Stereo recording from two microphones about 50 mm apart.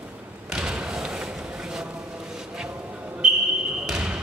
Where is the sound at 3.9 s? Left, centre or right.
Centre.